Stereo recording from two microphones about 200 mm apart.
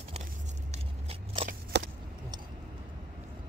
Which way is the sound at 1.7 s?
60° right (ahead or behind).